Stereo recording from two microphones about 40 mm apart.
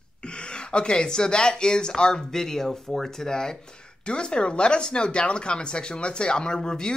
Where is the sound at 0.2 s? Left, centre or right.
Left.